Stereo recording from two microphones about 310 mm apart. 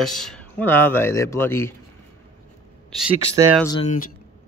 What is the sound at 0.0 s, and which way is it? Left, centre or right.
Speech, centre.